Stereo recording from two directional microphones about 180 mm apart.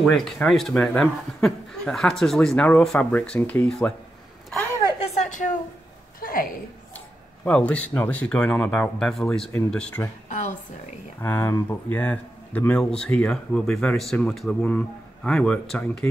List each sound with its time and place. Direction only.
0.0 s speech: centre (ahead or behind)
5.1 s a sound: 40° left (ahead or behind)
7.4 s speech: 5° left (ahead or behind)
11.1 s speech: 10° left (ahead or behind)